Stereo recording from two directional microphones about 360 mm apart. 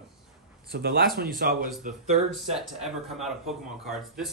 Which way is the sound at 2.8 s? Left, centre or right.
Centre.